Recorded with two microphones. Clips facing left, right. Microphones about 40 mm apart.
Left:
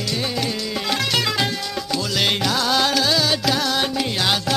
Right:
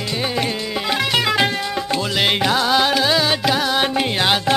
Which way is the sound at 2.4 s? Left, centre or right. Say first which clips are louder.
Right 3 dB; right.